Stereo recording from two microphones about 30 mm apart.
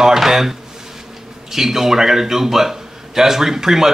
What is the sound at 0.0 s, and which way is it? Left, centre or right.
A man's voice, centre.